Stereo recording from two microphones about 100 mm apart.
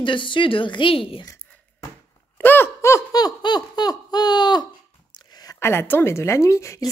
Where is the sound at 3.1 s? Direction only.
45° left (ahead or behind).